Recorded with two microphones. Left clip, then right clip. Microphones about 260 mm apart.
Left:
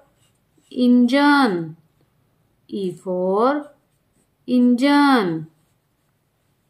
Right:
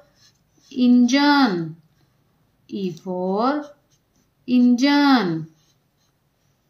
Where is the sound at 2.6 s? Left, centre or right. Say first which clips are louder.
Left 3 dB; centre.